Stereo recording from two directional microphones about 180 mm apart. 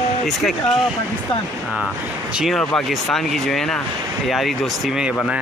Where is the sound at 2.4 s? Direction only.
5° left (ahead or behind).